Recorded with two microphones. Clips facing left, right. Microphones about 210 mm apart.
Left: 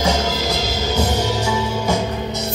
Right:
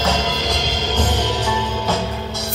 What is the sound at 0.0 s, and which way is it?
Music, 10° left (ahead or behind).